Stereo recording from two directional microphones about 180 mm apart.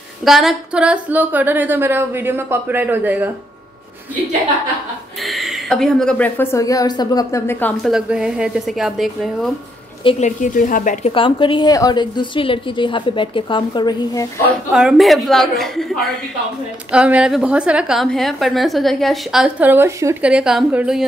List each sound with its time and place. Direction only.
0.2 s a woman's voice: centre (ahead or behind)
5.2 s a woman's voice: centre (ahead or behind)
7.8 s a woman's voice: 5° right (ahead or behind)
10.0 s a woman's voice: 40° left (ahead or behind); by 14.2 s 25° left (ahead or behind)
14.7 s a woman's voice: 5° right (ahead or behind)